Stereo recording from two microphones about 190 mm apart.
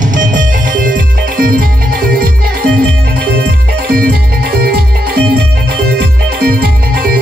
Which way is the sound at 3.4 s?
50° right (ahead or behind).